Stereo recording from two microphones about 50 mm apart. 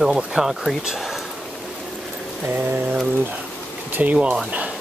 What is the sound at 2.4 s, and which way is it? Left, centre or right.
Mantra, right.